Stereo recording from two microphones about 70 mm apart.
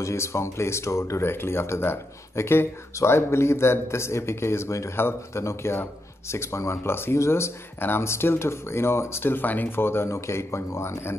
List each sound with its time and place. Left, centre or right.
0.0 s speech: left